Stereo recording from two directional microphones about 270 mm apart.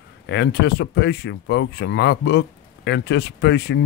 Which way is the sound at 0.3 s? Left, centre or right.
Left.